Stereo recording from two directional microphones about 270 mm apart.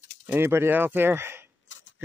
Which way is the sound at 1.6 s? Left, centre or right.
Left.